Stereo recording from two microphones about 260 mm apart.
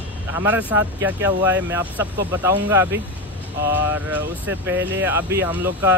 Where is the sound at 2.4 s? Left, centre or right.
Centre.